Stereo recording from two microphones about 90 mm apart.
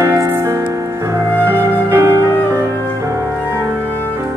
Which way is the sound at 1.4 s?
30° right (ahead or behind).